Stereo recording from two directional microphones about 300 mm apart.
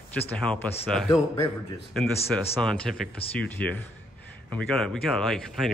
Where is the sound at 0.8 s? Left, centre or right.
Centre.